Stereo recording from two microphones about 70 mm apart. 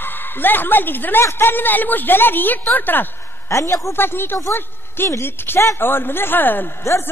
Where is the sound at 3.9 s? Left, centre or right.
Left.